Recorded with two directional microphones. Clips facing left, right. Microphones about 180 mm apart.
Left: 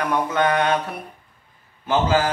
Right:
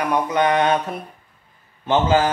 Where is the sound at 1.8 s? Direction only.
25° right (ahead or behind).